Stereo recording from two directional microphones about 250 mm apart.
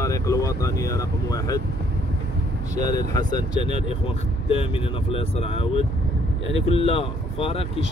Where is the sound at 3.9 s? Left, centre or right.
Left.